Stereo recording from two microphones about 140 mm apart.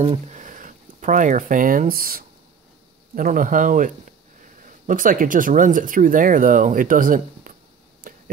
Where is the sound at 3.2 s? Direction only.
70° right (ahead or behind).